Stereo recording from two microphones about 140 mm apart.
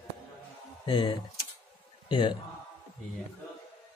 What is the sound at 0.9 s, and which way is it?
A man's voice, 35° left (ahead or behind).